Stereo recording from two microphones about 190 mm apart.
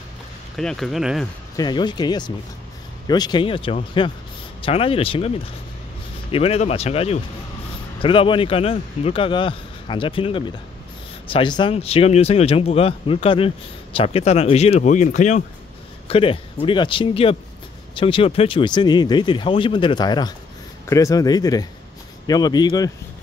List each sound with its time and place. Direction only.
0.6 s speech: centre (ahead or behind)
1.6 s speech: 25° left (ahead or behind)